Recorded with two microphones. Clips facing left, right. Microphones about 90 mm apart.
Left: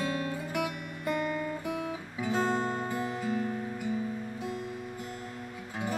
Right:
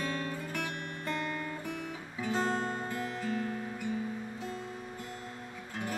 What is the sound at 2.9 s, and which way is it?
Music, 15° left (ahead or behind).